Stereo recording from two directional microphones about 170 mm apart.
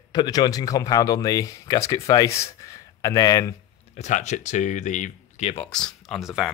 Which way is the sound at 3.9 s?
45° left (ahead or behind).